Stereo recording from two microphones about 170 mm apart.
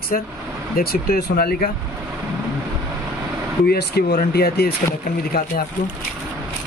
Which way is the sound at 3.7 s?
70° left (ahead or behind).